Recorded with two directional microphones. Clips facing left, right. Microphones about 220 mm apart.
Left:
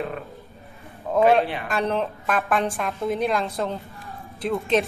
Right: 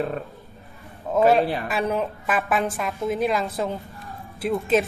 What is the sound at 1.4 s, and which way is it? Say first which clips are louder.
Speech: right 3 dB; 40° right (ahead or behind).